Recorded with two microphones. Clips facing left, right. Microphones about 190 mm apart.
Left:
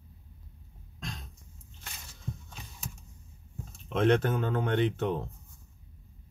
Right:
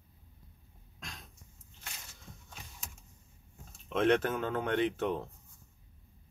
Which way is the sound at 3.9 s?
35° left (ahead or behind).